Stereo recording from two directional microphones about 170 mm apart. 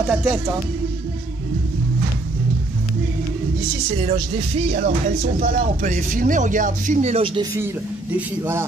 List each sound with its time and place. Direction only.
0.1 s speech: 10° right (ahead or behind)
4.0 s speech: 35° right (ahead or behind)
7.3 s speech: 15° right (ahead or behind)